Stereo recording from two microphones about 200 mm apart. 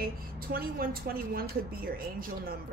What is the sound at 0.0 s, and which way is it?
A woman's voice, 45° right (ahead or behind).